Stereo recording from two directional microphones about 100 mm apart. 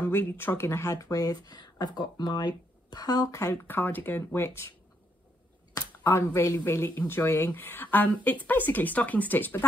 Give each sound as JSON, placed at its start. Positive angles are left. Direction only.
{"t": 0.0, "sound": "speech", "side_deg": 20}
{"t": 3.6, "sound": "speech", "side_deg": 20}
{"t": 5.8, "sound": "speech", "side_deg": 30}